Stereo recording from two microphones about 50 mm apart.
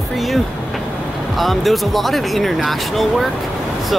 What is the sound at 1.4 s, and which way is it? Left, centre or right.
Speech, centre.